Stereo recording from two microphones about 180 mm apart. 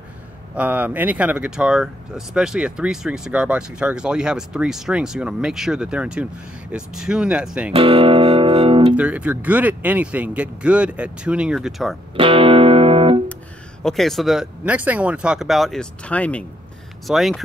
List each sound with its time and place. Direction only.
0.6 s speech: 10° right (ahead or behind)
7.7 s music: 30° right (ahead or behind)
8.9 s speech: 10° right (ahead or behind)
12.2 s music: 30° right (ahead or behind)
13.8 s speech: centre (ahead or behind)